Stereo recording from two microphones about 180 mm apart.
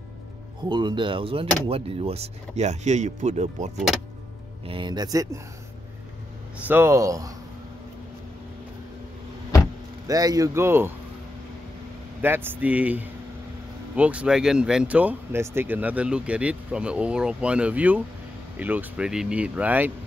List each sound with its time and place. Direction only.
0.7 s a man's voice: 25° right (ahead or behind)
4.6 s a man's voice: 25° right (ahead or behind)
6.7 s speech: 15° right (ahead or behind)
10.0 s a man's voice: 20° right (ahead or behind)
12.2 s speech: 10° right (ahead or behind)